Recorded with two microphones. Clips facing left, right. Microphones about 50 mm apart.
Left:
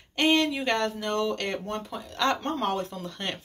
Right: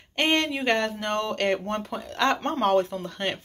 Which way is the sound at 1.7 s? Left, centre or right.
Right.